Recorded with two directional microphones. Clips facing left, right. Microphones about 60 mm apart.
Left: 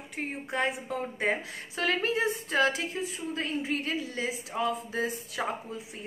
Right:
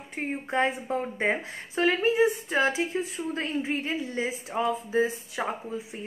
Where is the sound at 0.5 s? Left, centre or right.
Right.